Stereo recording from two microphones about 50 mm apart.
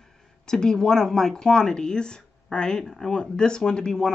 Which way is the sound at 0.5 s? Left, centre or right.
Centre.